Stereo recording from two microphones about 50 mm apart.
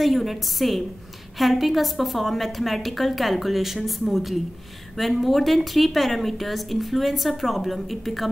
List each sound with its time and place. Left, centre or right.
0.0 s a woman's voice: centre